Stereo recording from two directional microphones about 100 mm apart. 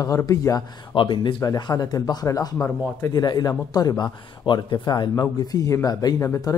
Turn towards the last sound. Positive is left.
turn(degrees=30)  # may be behind; listen again after turning